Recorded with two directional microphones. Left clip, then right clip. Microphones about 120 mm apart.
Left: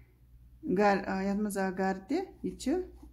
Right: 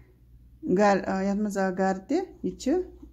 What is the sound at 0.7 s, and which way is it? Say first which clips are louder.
Speech: right 5 dB; 20° right (ahead or behind).